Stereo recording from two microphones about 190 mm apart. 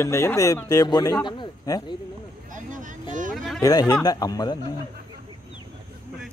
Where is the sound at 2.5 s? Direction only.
45° right (ahead or behind).